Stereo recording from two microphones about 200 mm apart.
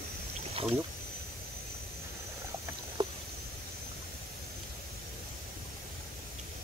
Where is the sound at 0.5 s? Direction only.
30° right (ahead or behind).